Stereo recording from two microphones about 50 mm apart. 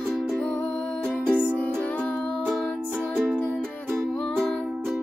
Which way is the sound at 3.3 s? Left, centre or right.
Centre.